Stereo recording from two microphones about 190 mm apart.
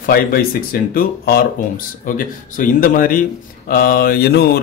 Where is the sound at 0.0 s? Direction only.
50° left (ahead or behind).